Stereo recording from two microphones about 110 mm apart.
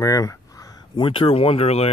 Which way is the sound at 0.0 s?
30° left (ahead or behind).